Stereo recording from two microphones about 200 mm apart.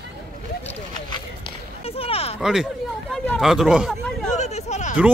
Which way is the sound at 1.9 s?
30° left (ahead or behind).